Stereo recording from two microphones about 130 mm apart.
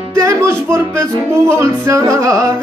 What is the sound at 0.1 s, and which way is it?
Music, 25° right (ahead or behind).